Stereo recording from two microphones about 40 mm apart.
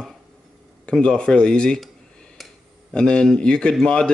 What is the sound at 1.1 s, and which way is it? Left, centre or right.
Speech, left.